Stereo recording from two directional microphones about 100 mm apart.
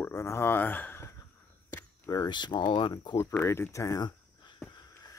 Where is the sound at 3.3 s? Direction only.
25° left (ahead or behind).